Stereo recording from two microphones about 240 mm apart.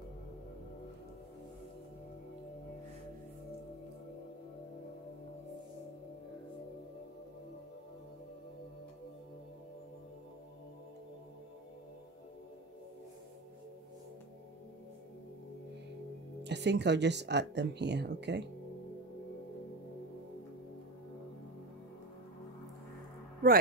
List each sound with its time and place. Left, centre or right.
16.4 s speech: right